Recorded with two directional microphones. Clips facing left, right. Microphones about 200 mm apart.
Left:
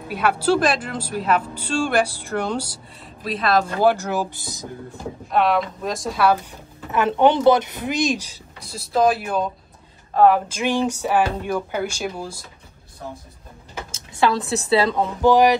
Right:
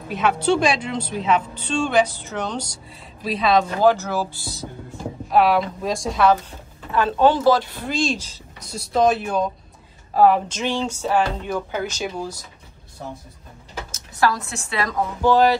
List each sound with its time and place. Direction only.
0.1 s a woman's voice: 5° left (ahead or behind)
3.8 s a woman's voice: 15° left (ahead or behind)
5.3 s a woman's voice: centre (ahead or behind)
6.9 s speech: 20° left (ahead or behind)
8.7 s a woman's voice: 5° left (ahead or behind)
10.6 s a woman's voice: 15° left (ahead or behind)
14.1 s speech: 25° left (ahead or behind)
15.2 s a woman's voice: 15° left (ahead or behind)